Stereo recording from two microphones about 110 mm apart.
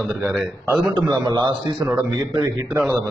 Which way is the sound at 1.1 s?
45° right (ahead or behind).